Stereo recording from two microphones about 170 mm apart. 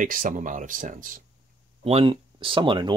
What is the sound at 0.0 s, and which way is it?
Speech, 50° right (ahead or behind).